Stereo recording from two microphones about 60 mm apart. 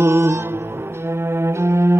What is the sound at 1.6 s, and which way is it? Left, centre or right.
Cello, right.